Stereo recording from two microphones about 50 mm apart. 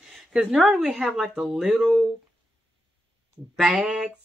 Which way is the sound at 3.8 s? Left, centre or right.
Centre.